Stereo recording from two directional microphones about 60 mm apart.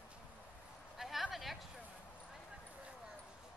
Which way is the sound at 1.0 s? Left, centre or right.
Centre.